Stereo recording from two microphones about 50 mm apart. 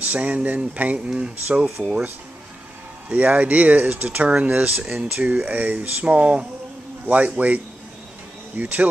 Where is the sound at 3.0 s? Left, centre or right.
Right.